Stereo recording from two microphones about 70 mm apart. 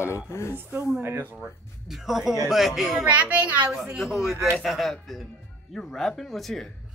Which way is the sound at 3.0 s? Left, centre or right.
Right.